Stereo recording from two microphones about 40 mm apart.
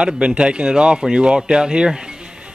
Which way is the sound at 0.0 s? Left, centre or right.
Right.